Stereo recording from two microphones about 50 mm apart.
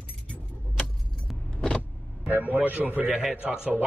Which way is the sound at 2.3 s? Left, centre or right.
Right.